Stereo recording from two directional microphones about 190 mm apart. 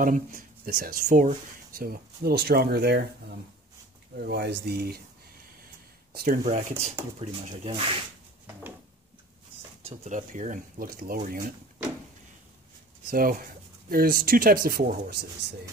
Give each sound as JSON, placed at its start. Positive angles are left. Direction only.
{"t": 0.0, "sound": "speech", "side_deg": -45}
{"t": 6.1, "sound": "speech", "side_deg": -45}
{"t": 7.4, "sound": "speech", "side_deg": -30}
{"t": 9.8, "sound": "speech", "side_deg": -40}
{"t": 13.1, "sound": "speech", "side_deg": -50}